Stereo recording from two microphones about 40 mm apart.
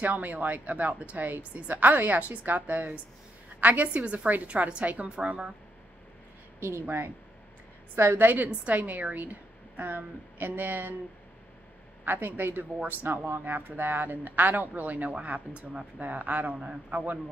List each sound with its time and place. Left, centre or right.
0.0 s a woman's voice: right
4.0 s a woman's voice: right
6.6 s speech: right
8.1 s speech: right
8.7 s speech: right
12.0 s a man's voice: right